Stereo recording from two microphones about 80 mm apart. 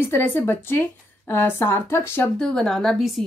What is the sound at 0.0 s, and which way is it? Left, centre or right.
Speech, left.